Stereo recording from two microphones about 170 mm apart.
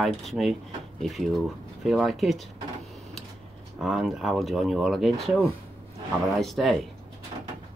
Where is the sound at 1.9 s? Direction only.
Centre (ahead or behind).